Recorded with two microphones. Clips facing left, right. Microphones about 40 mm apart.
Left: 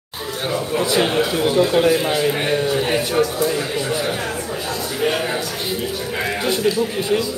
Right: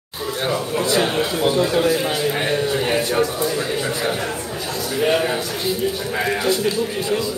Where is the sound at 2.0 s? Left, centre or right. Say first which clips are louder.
Left 2 dB; centre.